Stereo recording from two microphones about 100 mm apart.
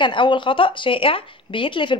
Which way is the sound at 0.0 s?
55° left (ahead or behind).